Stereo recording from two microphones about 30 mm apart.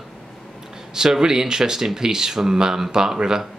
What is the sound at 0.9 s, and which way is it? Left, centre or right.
Speech, right.